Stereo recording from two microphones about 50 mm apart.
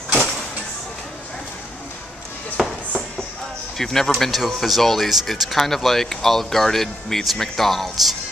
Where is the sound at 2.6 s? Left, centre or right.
Centre.